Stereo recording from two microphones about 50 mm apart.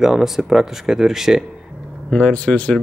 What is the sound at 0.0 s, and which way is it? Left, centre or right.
Speech, centre.